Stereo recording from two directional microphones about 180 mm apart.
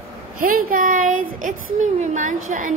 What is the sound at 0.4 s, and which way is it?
A child's voice, 50° right (ahead or behind).